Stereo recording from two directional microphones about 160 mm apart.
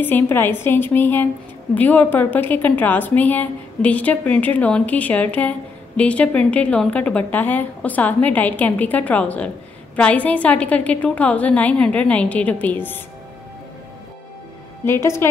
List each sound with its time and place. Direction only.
0.0 s a woman's voice: 15° left (ahead or behind)
14.9 s a woman's voice: 15° left (ahead or behind)